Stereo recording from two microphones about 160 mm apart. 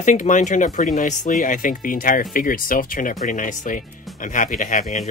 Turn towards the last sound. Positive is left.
turn(degrees=55)  # may be behind; listen again after turning